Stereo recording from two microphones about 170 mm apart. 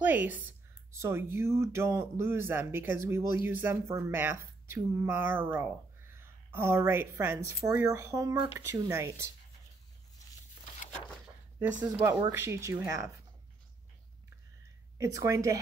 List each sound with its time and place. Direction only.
0.0 s a woman's voice: 10° right (ahead or behind)
11.8 s speech: 20° right (ahead or behind)
15.0 s speech: 20° right (ahead or behind)